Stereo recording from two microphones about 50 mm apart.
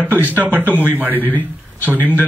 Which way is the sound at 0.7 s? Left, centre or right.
Left.